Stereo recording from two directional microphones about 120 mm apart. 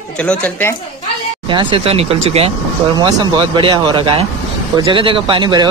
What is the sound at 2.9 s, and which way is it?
Speech, 40° right (ahead or behind).